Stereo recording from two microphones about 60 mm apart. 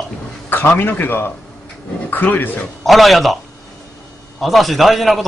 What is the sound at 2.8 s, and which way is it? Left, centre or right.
Speech, centre.